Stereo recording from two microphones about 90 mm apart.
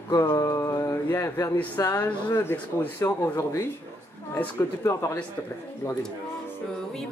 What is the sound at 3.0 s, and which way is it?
Speech, 30° left (ahead or behind).